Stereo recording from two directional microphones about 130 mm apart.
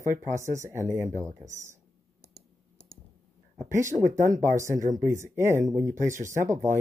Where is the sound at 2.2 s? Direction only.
55° left (ahead or behind).